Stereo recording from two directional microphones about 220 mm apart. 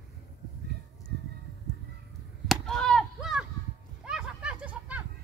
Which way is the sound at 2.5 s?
5° left (ahead or behind).